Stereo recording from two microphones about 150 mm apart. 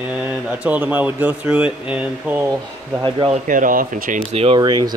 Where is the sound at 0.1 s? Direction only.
10° right (ahead or behind).